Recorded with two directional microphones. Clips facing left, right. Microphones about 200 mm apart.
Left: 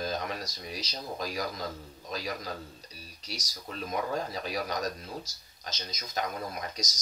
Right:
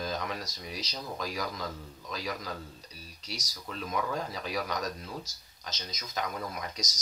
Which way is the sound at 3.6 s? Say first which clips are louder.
Left 1 dB; 40° left (ahead or behind).